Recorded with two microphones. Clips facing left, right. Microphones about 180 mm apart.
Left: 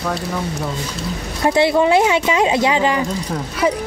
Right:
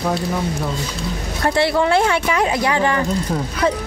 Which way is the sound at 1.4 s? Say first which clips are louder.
Left 3 dB; 20° left (ahead or behind).